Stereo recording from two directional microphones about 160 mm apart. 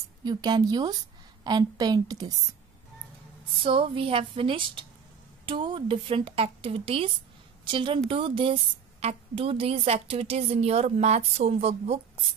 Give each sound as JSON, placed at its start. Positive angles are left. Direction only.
{"t": 0.2, "sound": "a woman's voice", "side_deg": -25}
{"t": 3.6, "sound": "a woman's voice", "side_deg": -35}